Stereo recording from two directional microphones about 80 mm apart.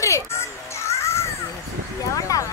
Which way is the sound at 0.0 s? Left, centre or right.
Left.